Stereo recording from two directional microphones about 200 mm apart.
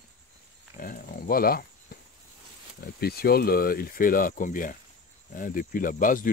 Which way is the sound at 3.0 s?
50° left (ahead or behind).